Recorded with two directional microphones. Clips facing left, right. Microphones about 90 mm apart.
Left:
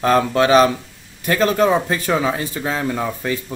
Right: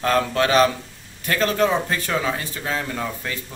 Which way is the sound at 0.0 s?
15° left (ahead or behind).